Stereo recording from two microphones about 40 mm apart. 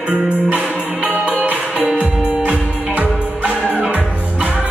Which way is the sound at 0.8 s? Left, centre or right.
Right.